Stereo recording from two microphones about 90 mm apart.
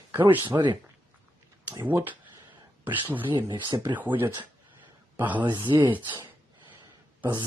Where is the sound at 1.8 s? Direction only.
20° right (ahead or behind).